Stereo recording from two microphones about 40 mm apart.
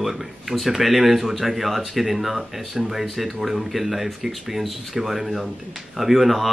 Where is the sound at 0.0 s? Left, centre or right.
Centre.